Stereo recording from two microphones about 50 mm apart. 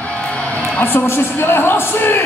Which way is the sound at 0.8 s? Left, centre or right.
Left.